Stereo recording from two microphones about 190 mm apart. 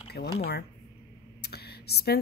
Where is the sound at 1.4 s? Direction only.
55° left (ahead or behind).